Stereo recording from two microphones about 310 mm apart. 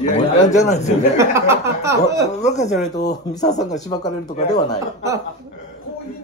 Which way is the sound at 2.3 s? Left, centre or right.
Left.